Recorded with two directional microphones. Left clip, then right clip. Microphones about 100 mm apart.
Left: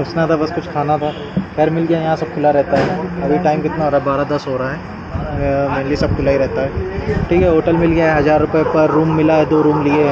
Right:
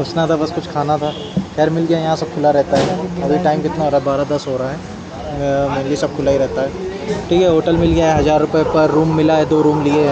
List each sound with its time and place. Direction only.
0.1 s speech: 20° right (ahead or behind)
7.2 s speech: 30° right (ahead or behind)